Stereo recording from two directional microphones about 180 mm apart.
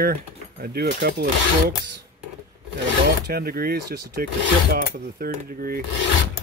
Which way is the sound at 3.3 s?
60° right (ahead or behind).